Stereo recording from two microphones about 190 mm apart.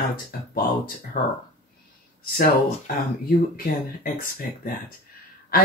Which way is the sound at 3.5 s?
50° left (ahead or behind).